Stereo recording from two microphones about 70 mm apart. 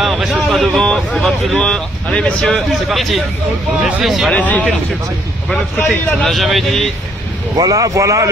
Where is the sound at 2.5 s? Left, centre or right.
Centre.